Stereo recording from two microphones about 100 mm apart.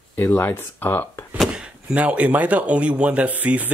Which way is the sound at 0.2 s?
25° left (ahead or behind).